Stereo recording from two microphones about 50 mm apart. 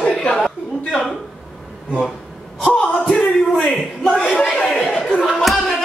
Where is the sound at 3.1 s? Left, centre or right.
Centre.